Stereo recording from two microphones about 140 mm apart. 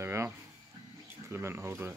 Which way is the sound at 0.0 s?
20° right (ahead or behind).